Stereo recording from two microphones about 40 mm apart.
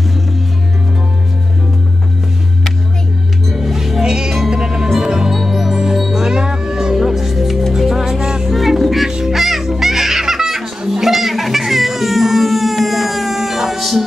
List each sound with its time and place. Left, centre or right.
3.4 s music: centre
4.1 s music: centre
8.5 s music: centre